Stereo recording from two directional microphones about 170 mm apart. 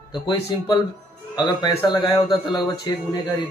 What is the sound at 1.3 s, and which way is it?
A man's voice, 25° left (ahead or behind).